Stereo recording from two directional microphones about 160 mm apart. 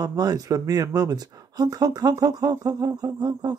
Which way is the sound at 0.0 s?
25° right (ahead or behind).